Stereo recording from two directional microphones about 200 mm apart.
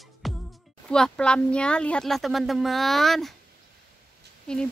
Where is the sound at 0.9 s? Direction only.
5° left (ahead or behind).